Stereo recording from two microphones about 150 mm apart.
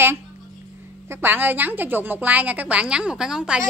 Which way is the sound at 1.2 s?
10° right (ahead or behind).